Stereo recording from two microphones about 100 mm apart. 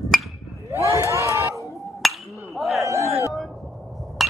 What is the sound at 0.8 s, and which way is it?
Crowd, 30° right (ahead or behind).